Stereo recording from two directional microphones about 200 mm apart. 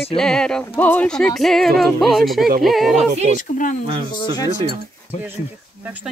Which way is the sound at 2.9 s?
35° right (ahead or behind).